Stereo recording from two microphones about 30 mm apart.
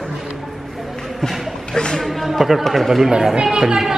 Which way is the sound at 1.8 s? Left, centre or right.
Left.